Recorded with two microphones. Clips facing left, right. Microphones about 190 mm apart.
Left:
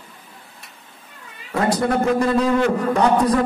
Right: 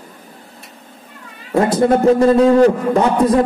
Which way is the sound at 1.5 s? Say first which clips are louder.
Right 6 dB; 25° right (ahead or behind).